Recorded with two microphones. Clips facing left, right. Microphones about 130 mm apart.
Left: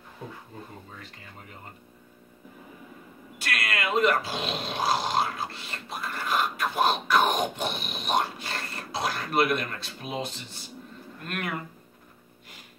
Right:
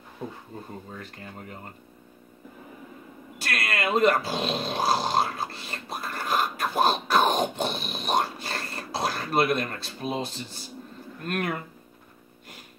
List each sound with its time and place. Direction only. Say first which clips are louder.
3.3 s speech: right 1 dB; 40° right (ahead or behind)